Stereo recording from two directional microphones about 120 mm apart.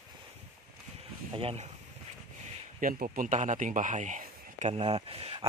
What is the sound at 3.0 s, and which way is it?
Speech, 90° right.